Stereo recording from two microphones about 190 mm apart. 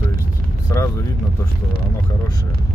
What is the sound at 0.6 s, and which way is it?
Speech, 15° left (ahead or behind).